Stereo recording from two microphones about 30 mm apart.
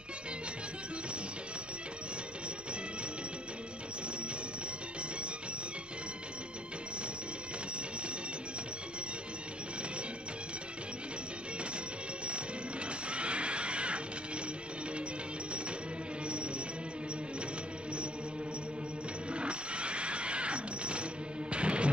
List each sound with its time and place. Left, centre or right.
13.1 s music: right
19.3 s a sound: right
21.5 s music: right